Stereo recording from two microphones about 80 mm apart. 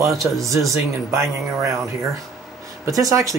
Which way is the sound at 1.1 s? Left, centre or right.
Right.